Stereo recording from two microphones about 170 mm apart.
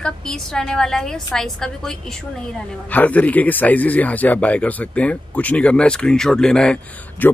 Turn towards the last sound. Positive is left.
turn(degrees=5)  # may be behind; listen again after turning